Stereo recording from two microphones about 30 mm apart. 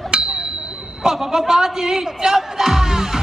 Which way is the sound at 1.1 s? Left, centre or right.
Centre.